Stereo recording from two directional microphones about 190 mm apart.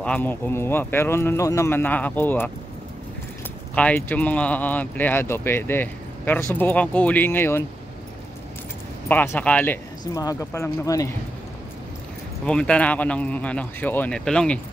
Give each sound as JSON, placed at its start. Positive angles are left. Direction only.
{"t": 0.0, "sound": "speech", "side_deg": 10}
{"t": 3.7, "sound": "speech", "side_deg": 10}
{"t": 9.1, "sound": "speech", "side_deg": 10}
{"t": 12.4, "sound": "speech", "side_deg": 5}